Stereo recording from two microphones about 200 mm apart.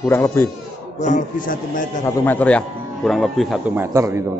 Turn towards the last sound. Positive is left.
turn(degrees=-15)  # may be behind; listen again after turning